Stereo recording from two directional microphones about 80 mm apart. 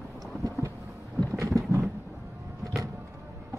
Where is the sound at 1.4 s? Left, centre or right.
Right.